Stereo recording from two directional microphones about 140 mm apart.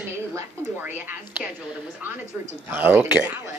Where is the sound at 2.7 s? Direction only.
15° right (ahead or behind).